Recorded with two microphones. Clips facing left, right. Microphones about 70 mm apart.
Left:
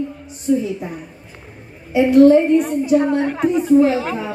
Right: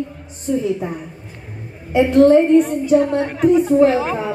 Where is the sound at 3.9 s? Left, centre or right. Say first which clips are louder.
Right 2 dB; centre.